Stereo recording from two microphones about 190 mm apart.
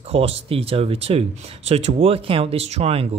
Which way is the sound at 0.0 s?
30° right (ahead or behind).